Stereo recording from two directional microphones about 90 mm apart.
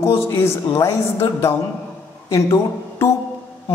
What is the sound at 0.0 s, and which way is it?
A woman's voice, 30° left (ahead or behind).